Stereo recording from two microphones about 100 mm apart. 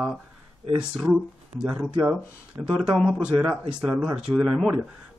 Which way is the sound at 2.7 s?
5° left (ahead or behind).